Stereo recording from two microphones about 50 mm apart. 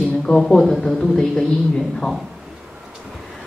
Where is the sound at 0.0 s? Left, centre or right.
Centre.